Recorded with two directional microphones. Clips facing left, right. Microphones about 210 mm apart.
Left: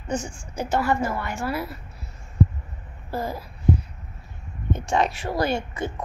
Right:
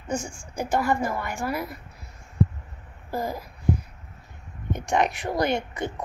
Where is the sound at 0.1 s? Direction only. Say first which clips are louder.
Left 1 dB; 10° right (ahead or behind).